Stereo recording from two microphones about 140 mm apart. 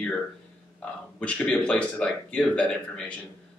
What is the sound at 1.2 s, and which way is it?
Speech, 5° left (ahead or behind).